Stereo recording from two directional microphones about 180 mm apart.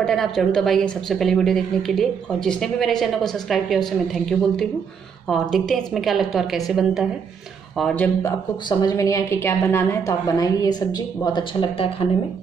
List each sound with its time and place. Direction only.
0.0 s a woman's voice: 5° left (ahead or behind); by 12.1 s 30° left (ahead or behind)